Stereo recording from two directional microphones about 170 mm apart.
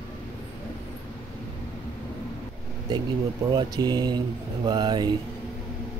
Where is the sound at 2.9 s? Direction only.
25° right (ahead or behind).